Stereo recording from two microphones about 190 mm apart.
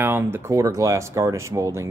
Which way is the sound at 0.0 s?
10° right (ahead or behind).